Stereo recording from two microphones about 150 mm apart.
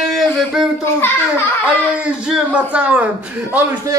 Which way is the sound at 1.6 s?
10° right (ahead or behind).